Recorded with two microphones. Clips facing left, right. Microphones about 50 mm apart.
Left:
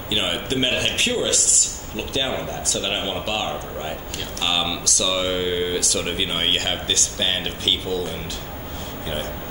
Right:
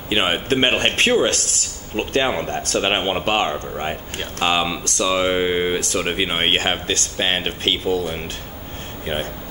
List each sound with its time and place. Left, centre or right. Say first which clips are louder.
0.1 s a man's voice: right 5 dB; right